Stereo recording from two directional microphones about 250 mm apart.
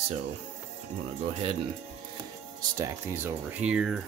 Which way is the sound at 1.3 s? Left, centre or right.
Right.